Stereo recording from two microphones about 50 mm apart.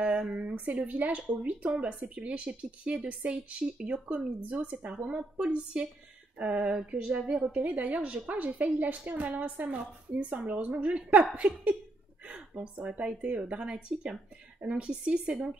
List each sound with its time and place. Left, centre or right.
0.0 s a woman's voice: right